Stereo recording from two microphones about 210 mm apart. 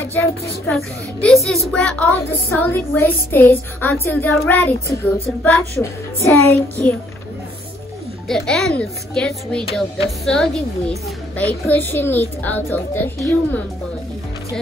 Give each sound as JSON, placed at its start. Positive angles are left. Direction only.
{"t": 1.2, "sound": "a child's voice", "side_deg": 0}
{"t": 8.3, "sound": "a child's voice", "side_deg": 0}